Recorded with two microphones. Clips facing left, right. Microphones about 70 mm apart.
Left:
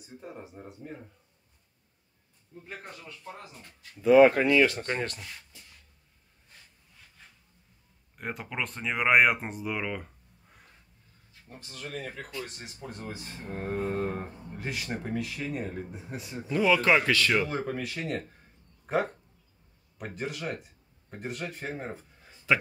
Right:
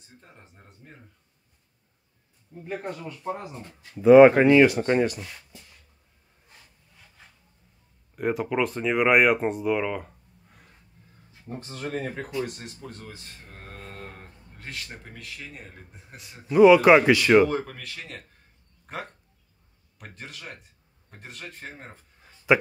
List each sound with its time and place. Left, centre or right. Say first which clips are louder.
0.0 s speech: left 9 dB; centre
2.7 s speech: right 10 dB; right
3.3 s speech: right 9 dB; right
4.6 s speech: right 8 dB; centre
8.2 s speech: right 10 dB; centre
11.6 s speech: right 6 dB; right
12.4 s speech: right 6 dB; centre
12.7 s speech: left 2 dB; centre
16.4 s speech: right 9 dB; centre
17.5 s a man's voice: right 2 dB; centre